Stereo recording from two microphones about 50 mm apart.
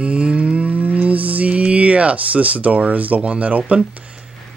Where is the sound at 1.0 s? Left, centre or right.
Right.